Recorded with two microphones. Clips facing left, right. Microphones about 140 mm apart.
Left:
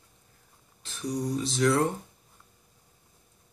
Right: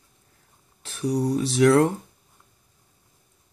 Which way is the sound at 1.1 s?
75° right (ahead or behind).